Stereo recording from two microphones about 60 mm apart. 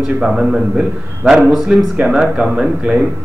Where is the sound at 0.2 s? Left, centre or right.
Centre.